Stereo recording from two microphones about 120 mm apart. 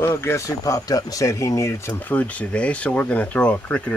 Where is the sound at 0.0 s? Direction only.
20° left (ahead or behind).